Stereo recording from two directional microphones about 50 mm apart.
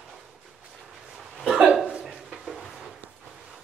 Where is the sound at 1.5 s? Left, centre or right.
Centre.